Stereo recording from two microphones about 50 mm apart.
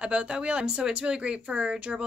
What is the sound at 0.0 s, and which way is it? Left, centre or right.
Speech, centre.